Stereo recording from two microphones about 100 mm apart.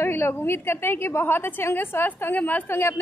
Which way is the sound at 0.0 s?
25° left (ahead or behind).